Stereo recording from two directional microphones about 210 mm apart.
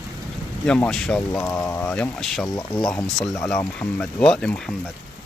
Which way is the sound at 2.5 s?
15° left (ahead or behind).